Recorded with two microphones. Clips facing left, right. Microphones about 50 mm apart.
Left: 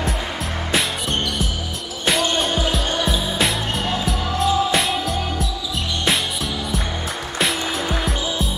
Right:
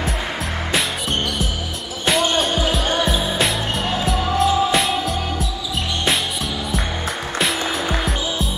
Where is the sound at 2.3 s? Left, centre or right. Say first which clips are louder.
Right 1 dB; centre.